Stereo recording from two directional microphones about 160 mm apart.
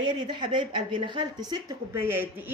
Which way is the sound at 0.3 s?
30° right (ahead or behind).